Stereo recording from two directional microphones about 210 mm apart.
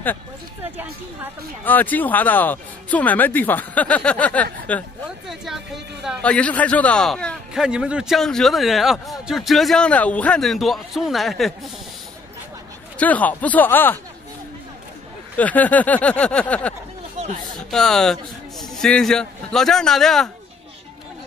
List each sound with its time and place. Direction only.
0.6 s a sound: 10° right (ahead or behind)
1.6 s a man's voice: 10° left (ahead or behind)
12.9 s speech: 5° left (ahead or behind)
15.3 s speech: 5° left (ahead or behind)
17.2 s a sound: 35° right (ahead or behind)
17.6 s a man's voice: centre (ahead or behind)